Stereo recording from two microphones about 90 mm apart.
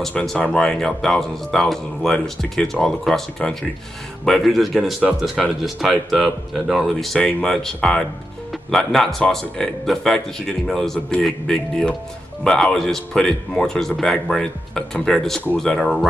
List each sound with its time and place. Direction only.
0.0 s speech: 5° left (ahead or behind)